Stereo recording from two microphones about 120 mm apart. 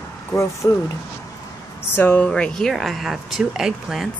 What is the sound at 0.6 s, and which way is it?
Speech, 15° left (ahead or behind).